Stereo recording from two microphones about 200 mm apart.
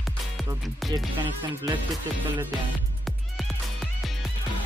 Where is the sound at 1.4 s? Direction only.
20° right (ahead or behind).